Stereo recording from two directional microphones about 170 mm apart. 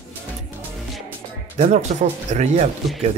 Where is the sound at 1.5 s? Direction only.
45° right (ahead or behind).